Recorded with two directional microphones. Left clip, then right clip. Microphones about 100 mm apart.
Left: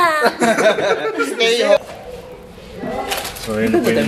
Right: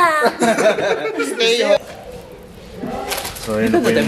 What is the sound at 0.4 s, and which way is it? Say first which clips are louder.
Speech: left 1 dB; 15° right (ahead or behind).